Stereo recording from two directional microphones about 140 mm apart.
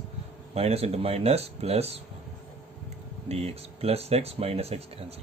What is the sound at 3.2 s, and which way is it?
Speech, 45° right (ahead or behind).